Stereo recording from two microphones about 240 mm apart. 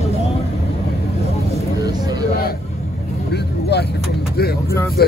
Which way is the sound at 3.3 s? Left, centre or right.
Left.